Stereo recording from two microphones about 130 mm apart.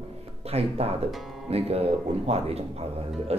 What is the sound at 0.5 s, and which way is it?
Speech, 50° right (ahead or behind).